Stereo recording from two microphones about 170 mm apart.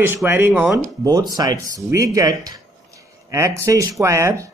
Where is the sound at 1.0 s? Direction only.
25° right (ahead or behind).